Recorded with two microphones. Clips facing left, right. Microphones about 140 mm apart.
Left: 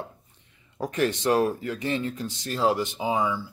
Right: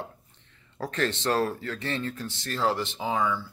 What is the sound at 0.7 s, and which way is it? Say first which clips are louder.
Speech: left 3 dB; 15° left (ahead or behind).